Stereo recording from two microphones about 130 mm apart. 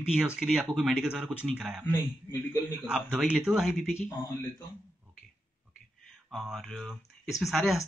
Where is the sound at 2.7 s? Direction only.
10° right (ahead or behind).